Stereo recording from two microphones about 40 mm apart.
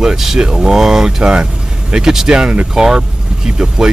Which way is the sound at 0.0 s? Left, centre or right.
Centre.